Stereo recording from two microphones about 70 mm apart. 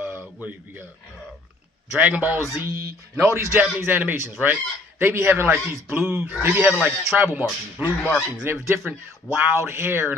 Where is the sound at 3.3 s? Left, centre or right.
Right.